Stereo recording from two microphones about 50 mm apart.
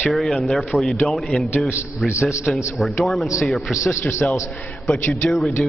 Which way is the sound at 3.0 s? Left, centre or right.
Centre.